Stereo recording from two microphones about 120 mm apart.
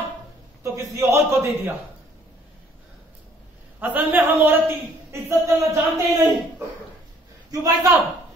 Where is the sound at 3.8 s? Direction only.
15° right (ahead or behind).